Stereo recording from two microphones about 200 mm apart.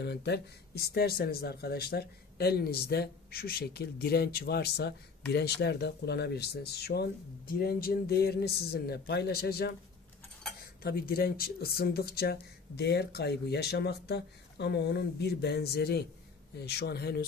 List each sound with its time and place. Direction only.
0.0 s speech: 55° left (ahead or behind)
10.8 s speech: 50° left (ahead or behind)